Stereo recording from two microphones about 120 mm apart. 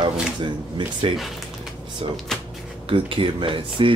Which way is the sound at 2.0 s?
50° right (ahead or behind).